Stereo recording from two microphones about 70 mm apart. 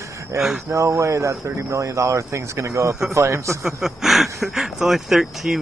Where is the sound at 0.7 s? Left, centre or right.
Right.